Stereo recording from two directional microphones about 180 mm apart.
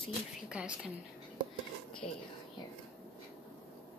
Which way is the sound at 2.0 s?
35° left (ahead or behind).